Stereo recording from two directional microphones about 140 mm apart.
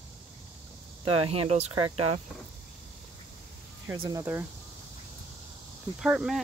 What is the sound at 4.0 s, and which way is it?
Speech, 25° right (ahead or behind).